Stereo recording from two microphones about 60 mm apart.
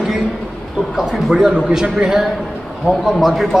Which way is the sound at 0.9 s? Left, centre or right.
Centre.